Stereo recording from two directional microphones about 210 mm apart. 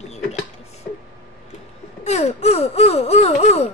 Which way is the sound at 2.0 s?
30° left (ahead or behind).